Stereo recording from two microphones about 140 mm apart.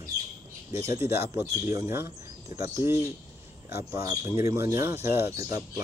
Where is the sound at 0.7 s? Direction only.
20° right (ahead or behind).